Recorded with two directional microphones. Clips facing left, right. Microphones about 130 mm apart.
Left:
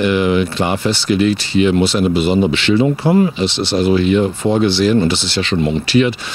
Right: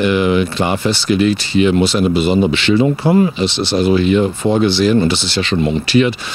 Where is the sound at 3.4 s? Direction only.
5° right (ahead or behind).